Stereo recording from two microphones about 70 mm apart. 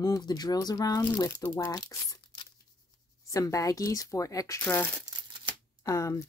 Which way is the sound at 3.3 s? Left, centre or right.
Left.